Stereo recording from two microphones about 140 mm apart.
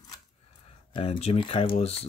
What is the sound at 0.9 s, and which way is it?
Speech, 45° left (ahead or behind).